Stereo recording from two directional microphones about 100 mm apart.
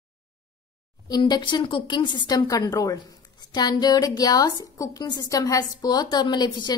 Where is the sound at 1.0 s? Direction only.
45° left (ahead or behind).